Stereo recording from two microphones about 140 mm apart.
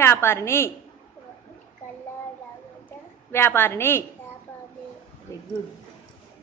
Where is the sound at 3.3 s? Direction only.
15° left (ahead or behind).